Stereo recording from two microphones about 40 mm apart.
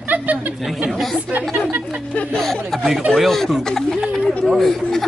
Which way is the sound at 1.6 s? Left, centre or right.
Right.